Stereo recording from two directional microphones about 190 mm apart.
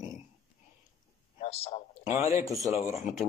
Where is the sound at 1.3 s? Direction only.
35° left (ahead or behind).